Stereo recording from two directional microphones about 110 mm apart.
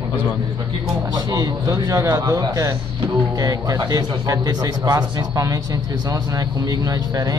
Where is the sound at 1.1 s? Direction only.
35° right (ahead or behind).